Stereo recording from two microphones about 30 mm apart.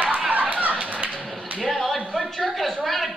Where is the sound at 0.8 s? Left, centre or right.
Right.